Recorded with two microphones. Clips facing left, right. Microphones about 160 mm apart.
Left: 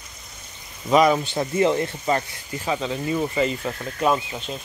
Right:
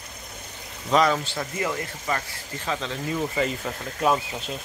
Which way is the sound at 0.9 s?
15° left (ahead or behind).